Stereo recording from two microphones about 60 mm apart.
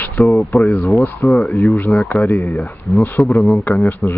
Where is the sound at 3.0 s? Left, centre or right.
Left.